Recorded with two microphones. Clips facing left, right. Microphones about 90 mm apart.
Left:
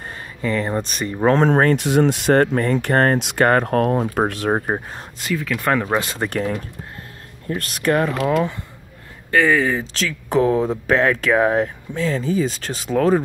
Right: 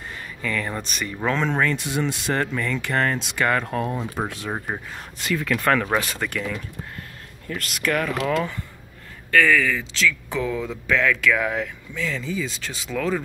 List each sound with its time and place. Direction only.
0.0 s a sound: 35° left (ahead or behind)
1.2 s speech: 45° left (ahead or behind)
4.6 s speech: 40° left (ahead or behind)
5.3 s speech: 5° left (ahead or behind)
5.7 s speech: 15° left (ahead or behind)
6.0 s speech: 35° left (ahead or behind)
8.2 s speech: 10° left (ahead or behind)
9.3 s speech: 30° left (ahead or behind)
9.9 s speech: 45° left (ahead or behind)